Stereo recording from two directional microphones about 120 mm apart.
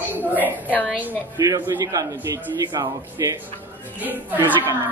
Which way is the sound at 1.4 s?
30° right (ahead or behind).